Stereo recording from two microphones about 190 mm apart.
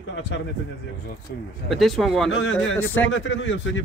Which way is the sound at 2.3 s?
75° left (ahead or behind).